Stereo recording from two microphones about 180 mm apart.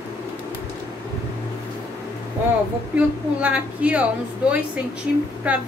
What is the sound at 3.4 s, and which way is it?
Speech, 5° right (ahead or behind).